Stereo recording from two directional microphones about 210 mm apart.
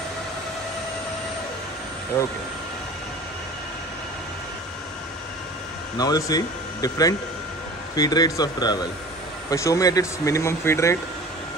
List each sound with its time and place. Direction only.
2.1 s speech: 10° left (ahead or behind)
5.9 s speech: 15° left (ahead or behind)